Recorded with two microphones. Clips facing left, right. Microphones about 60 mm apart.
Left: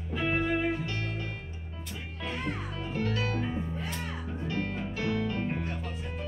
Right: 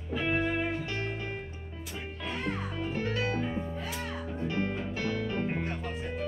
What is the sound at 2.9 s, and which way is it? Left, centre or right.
Music, right.